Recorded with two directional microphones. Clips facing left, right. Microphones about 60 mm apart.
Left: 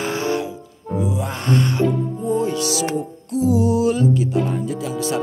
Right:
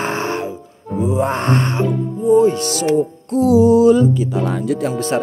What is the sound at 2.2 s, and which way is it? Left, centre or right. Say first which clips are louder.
Music: right 10 dB; right.